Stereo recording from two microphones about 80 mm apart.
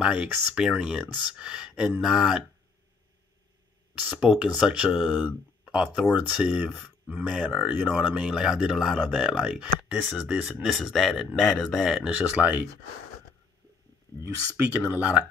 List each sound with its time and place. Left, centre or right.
0.0 s speech: centre
3.9 s speech: centre
12.0 s speech: centre
14.1 s a sound: left
14.9 s speech: centre